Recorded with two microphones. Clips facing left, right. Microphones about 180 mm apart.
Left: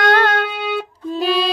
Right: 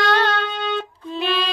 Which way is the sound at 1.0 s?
40° left (ahead or behind).